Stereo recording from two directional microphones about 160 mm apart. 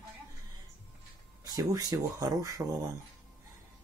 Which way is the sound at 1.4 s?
25° right (ahead or behind).